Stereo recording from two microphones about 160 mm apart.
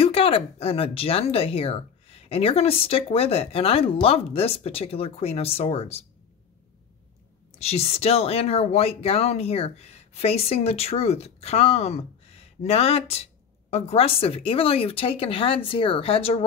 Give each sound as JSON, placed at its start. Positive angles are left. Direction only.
{"t": 0.0, "sound": "speech", "side_deg": 35}
{"t": 7.5, "sound": "speech", "side_deg": 40}